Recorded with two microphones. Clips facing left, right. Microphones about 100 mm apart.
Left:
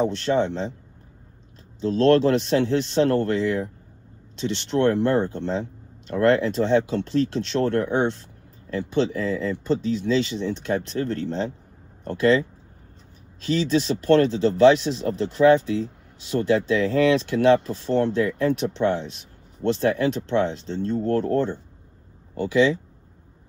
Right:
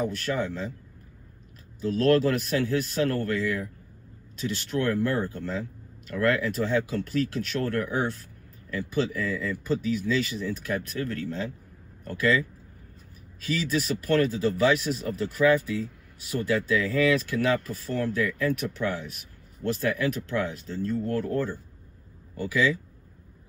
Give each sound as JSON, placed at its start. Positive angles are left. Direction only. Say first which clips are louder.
{"t": 0.0, "sound": "speech", "louder": "left 7 dB", "side_deg": 25}
{"t": 1.8, "sound": "speech", "louder": "left 4 dB", "side_deg": 25}